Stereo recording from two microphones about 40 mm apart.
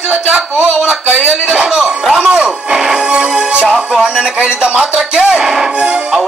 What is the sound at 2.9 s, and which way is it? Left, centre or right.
Music, centre.